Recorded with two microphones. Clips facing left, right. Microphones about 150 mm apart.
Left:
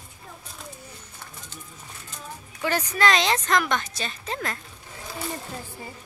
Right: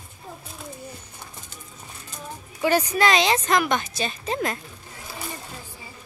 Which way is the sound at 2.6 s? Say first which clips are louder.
Right 3 dB; 10° right (ahead or behind).